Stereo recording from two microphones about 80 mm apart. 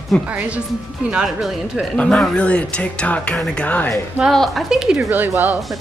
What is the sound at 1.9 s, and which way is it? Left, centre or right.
Speech, centre.